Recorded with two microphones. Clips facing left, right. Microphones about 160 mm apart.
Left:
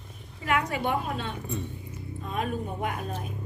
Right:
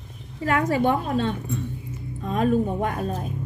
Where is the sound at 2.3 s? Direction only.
40° right (ahead or behind).